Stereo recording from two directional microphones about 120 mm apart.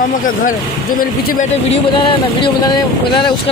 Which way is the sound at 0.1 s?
90° left.